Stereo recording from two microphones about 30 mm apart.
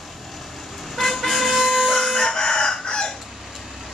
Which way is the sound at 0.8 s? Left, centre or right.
Centre.